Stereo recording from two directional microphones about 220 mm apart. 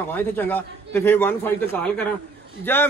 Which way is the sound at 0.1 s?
10° left (ahead or behind).